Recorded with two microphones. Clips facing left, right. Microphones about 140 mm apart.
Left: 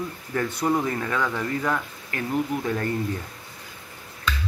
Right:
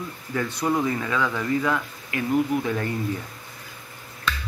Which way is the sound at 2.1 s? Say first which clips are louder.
Right 3 dB; 40° left (ahead or behind).